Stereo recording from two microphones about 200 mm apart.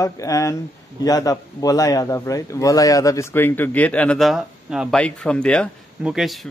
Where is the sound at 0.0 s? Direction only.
15° left (ahead or behind).